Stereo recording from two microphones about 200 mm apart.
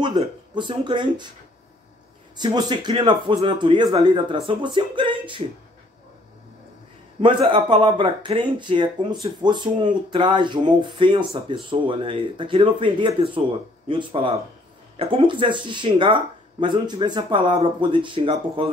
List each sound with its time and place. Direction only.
0.0 s speech: 25° right (ahead or behind)
2.3 s speech: 20° right (ahead or behind)
7.2 s speech: 25° right (ahead or behind)